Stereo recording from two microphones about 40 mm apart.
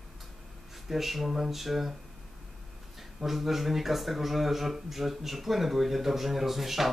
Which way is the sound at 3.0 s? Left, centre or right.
Centre.